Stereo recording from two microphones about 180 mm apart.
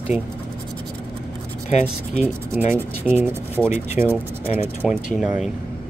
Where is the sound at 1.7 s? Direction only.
40° left (ahead or behind).